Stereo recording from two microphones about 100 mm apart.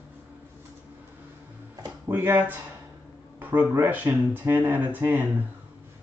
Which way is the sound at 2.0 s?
20° right (ahead or behind).